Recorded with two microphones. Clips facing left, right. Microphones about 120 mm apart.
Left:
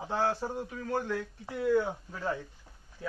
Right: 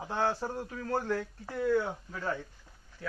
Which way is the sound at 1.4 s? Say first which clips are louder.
Left 1 dB; 10° left (ahead or behind).